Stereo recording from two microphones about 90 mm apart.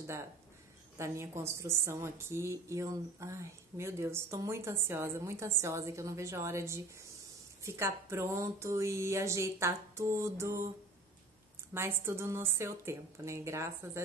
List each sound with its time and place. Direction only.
0.9 s a woman's voice: 30° right (ahead or behind)
11.7 s a woman's voice: 25° right (ahead or behind)